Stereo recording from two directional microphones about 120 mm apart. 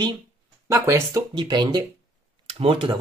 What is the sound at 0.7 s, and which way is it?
Speech, 25° right (ahead or behind).